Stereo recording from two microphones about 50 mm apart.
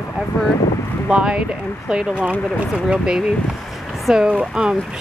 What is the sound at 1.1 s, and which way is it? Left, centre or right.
Speech, centre.